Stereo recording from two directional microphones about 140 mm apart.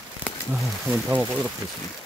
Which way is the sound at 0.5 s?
10° right (ahead or behind).